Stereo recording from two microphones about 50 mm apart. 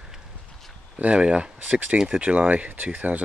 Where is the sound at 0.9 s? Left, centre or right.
Right.